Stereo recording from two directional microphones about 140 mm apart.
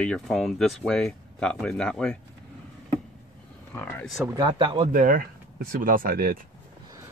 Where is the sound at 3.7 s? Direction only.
15° left (ahead or behind).